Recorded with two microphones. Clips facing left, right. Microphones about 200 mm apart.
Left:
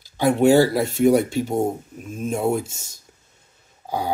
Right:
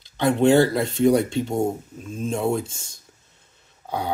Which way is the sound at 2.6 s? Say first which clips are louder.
Even; 25° left (ahead or behind).